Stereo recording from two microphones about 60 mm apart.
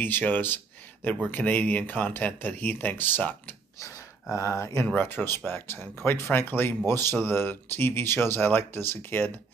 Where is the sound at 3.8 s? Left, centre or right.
Left.